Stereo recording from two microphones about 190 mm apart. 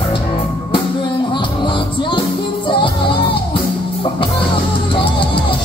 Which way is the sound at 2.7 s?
25° left (ahead or behind).